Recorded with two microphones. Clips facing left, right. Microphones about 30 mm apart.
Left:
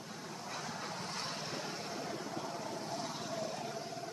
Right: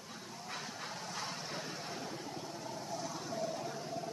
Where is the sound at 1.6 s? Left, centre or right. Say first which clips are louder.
Left 1 dB; centre.